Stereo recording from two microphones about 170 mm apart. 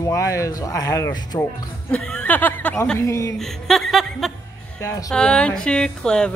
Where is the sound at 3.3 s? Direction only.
Centre (ahead or behind).